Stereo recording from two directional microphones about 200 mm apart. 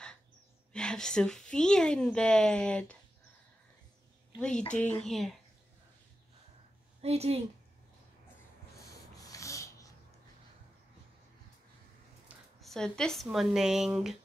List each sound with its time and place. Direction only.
0.7 s speech: 5° left (ahead or behind)
4.4 s speech: 5° left (ahead or behind)
7.0 s speech: 30° right (ahead or behind)
9.1 s snort: 15° left (ahead or behind)
12.3 s speech: centre (ahead or behind)